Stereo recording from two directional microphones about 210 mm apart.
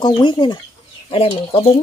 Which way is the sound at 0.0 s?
20° left (ahead or behind).